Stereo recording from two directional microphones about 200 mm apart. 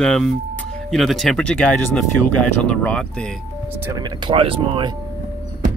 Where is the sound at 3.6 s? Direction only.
10° right (ahead or behind); by 4.9 s 25° right (ahead or behind).